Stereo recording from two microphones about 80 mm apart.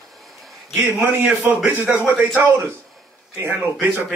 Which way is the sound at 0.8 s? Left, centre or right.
Right.